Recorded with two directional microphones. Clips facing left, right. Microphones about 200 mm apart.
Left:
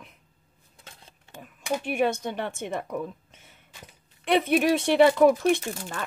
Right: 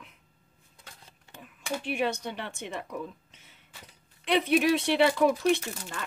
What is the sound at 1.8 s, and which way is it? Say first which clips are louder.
A woman's voice: left 4 dB; 50° left (ahead or behind).